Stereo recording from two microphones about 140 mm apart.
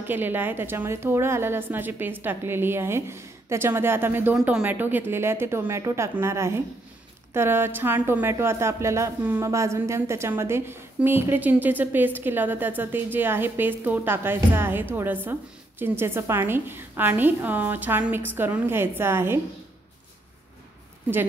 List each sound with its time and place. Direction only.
0.0 s speech: 15° right (ahead or behind)